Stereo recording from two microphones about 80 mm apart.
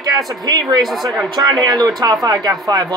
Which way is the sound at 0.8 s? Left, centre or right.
Centre.